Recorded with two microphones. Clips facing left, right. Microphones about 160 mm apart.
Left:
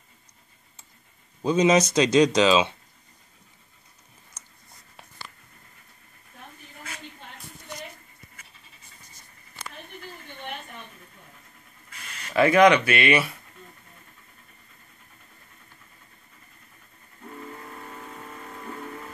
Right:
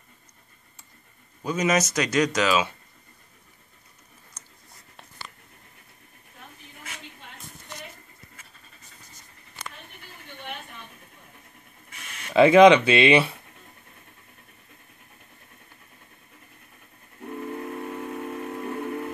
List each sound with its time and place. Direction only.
1.4 s speech: 25° left (ahead or behind)
12.3 s speech: 20° right (ahead or behind)
17.2 s steam whistle: 60° right (ahead or behind)